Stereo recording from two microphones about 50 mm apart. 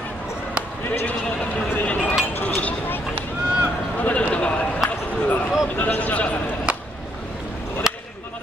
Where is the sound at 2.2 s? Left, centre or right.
Left.